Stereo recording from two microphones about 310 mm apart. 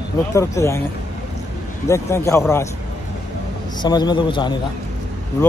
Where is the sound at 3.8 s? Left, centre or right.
Centre.